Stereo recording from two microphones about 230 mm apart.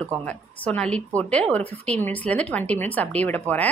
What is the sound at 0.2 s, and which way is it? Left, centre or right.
A woman's voice, centre.